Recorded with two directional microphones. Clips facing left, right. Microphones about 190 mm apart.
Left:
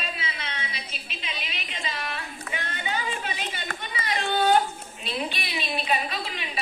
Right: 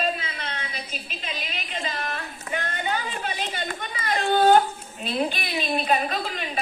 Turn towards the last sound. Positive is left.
turn(degrees=-45)  # may be behind; listen again after turning